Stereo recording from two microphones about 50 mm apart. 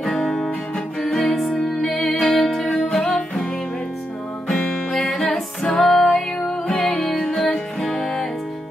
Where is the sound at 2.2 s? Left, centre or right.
Centre.